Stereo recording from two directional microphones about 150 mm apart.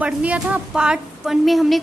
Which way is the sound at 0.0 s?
10° right (ahead or behind).